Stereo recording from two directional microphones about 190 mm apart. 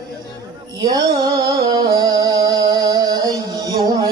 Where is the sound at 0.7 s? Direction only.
20° right (ahead or behind).